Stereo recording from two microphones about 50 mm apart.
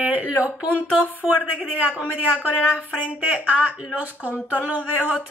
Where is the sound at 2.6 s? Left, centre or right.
Centre.